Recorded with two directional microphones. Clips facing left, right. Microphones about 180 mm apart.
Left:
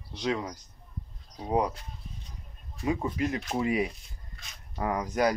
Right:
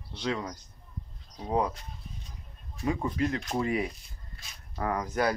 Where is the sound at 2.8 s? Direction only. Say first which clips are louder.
Even; 15° left (ahead or behind).